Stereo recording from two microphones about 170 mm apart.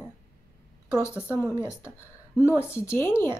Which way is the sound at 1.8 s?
5° right (ahead or behind).